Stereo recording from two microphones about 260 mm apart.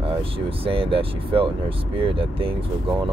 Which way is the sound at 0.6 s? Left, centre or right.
Right.